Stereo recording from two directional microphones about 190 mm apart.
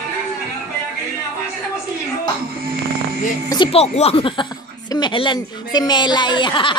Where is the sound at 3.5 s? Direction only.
30° left (ahead or behind).